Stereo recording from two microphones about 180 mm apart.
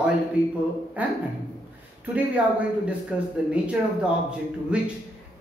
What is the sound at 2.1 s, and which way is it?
Speech, 5° right (ahead or behind).